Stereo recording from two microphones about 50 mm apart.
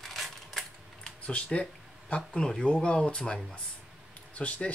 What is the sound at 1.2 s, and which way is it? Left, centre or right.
Speech, left.